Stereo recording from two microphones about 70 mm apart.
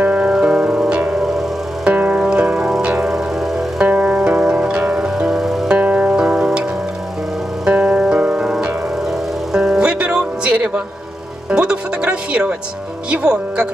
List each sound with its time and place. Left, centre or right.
0.0 s music: right
3.1 s music: centre
3.8 s music: centre
5.8 s music: right
6.1 s music: centre
7.6 s music: centre
13.1 s speech: centre